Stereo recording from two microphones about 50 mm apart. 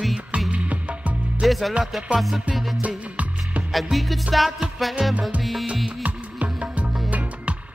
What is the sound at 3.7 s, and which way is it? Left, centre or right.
Music, centre.